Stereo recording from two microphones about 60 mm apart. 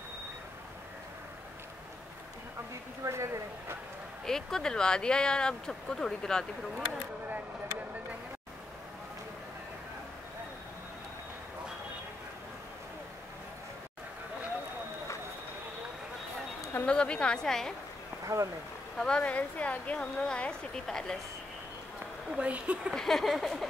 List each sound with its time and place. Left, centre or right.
3.0 s speech: right
4.3 s speech: centre
16.8 s speech: centre
18.2 s speech: right
18.9 s a woman's voice: centre
22.4 s speech: right
22.9 s a sound: centre